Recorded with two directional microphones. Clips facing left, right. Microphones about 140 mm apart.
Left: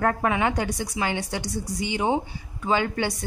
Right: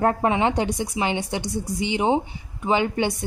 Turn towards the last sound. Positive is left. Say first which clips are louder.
# right 3 dB
turn(degrees=-20)  # may be behind; listen again after turning